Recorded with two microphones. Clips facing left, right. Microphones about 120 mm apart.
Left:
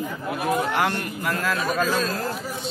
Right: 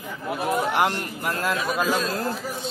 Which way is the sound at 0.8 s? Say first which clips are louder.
Left 1 dB; 25° right (ahead or behind).